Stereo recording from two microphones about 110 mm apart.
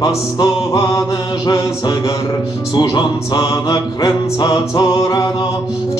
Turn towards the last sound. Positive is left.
turn(degrees=35)  # may be behind; listen again after turning